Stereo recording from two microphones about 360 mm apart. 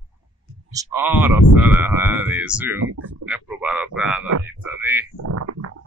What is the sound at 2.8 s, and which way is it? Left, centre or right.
Speech, right.